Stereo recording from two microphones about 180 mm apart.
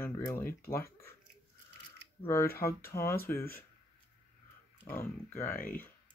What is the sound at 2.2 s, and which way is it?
Speech, 15° left (ahead or behind).